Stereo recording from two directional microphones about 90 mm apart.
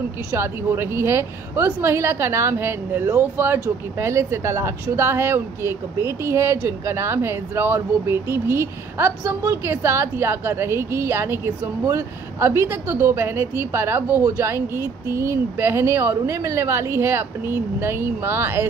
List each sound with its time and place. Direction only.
0.3 s speech: 25° right (ahead or behind)
3.6 s speech: 35° right (ahead or behind)